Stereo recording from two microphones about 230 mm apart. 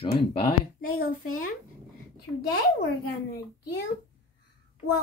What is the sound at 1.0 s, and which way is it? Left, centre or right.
Speech, left.